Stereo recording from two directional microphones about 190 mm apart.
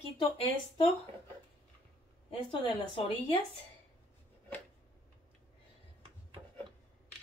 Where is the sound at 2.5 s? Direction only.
30° left (ahead or behind).